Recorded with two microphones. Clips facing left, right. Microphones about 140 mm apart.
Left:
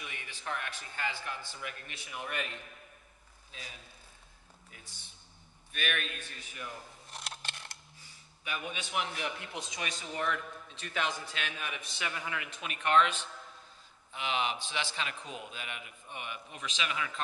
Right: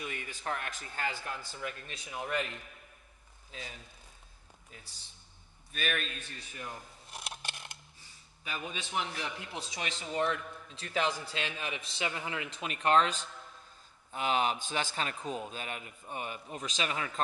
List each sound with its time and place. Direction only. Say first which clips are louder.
0.0 s a man's voice: right 4 dB; 45° right (ahead or behind)
5.7 s a man's voice: right 1 dB; 35° right (ahead or behind)
7.1 s a sound: right 2 dB; 10° right (ahead or behind)
8.5 s a man's voice: left 1 dB; 35° right (ahead or behind)